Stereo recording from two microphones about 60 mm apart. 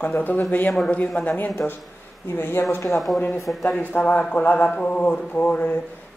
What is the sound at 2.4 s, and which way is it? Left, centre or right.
Speech, left.